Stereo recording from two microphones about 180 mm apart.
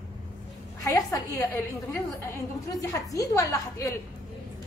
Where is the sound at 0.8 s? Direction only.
15° left (ahead or behind).